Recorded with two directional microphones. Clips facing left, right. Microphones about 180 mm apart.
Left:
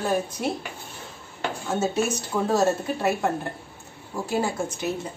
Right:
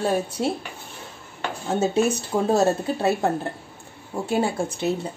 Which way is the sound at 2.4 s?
30° right (ahead or behind).